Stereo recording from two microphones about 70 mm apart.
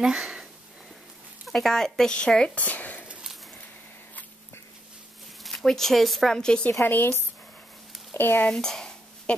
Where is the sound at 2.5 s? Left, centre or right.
Left.